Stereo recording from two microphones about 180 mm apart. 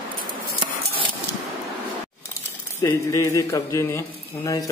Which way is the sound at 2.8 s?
15° left (ahead or behind).